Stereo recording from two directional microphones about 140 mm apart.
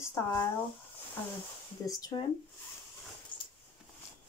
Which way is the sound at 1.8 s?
25° left (ahead or behind).